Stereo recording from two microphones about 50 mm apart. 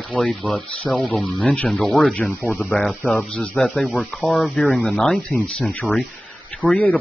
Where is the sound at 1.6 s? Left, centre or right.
Centre.